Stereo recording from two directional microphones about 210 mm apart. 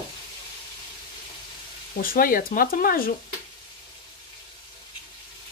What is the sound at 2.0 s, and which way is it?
Speech, 45° left (ahead or behind).